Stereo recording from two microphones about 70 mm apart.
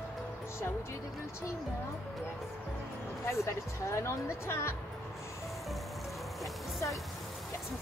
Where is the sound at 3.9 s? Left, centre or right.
Left.